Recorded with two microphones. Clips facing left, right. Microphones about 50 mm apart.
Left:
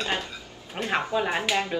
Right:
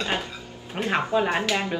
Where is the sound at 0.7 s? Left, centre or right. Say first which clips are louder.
Right 3 dB; centre.